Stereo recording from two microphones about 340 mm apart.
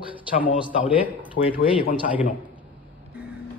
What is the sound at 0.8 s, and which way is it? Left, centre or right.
A man's voice, centre.